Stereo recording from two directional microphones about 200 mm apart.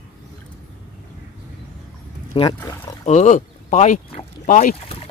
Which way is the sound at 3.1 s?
35° left (ahead or behind).